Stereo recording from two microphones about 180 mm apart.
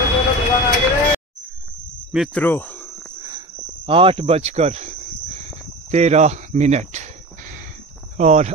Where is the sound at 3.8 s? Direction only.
30° right (ahead or behind).